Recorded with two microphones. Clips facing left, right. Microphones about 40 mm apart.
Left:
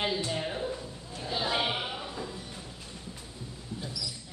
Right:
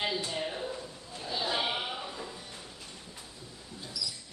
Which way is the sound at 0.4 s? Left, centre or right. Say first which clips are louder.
Left 2 dB; centre.